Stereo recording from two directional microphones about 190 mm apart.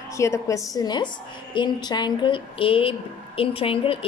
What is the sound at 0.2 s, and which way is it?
A woman's voice, 15° left (ahead or behind).